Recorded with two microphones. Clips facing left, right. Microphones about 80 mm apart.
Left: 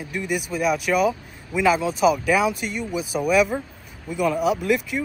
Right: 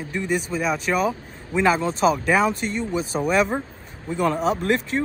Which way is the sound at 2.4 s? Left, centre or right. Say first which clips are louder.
Right 1 dB; centre.